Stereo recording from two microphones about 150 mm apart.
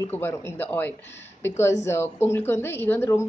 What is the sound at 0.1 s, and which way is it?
A woman's voice, 15° left (ahead or behind).